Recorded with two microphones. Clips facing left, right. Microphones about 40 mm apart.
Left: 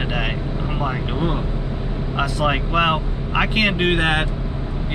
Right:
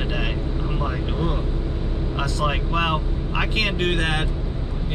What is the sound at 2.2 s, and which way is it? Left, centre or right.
Speech, centre.